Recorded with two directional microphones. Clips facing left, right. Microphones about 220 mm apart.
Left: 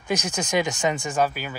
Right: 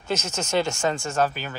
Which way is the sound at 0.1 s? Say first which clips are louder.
Left 1 dB; 15° left (ahead or behind).